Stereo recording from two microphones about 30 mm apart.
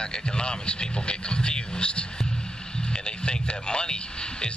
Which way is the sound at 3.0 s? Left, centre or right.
Left.